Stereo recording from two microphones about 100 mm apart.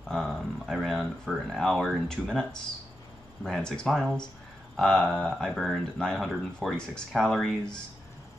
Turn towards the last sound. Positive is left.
turn(degrees=5)  # may be behind; listen again after turning